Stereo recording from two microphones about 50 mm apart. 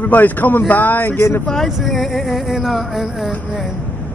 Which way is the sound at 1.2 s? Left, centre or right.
Left.